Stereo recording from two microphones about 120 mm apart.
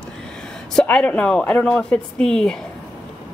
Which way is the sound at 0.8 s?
5° left (ahead or behind).